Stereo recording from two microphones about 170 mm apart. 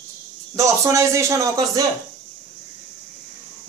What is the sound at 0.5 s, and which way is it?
Speech, 20° right (ahead or behind).